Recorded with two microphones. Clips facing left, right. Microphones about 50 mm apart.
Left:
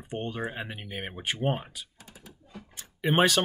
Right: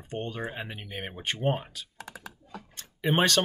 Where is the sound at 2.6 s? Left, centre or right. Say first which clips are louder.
Left 1 dB; centre.